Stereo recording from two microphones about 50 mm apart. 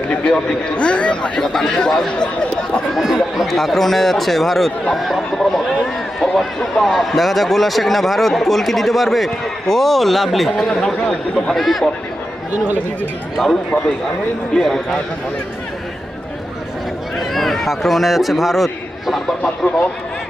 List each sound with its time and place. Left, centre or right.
0.2 s a man's voice: centre
1.5 s speech: centre
2.9 s speech: centre
10.5 s speech: centre
11.5 s speech: centre
14.5 s speech: centre
17.2 s a sound: centre
19.4 s speech: left